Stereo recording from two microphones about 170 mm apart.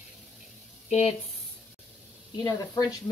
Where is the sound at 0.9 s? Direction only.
40° left (ahead or behind).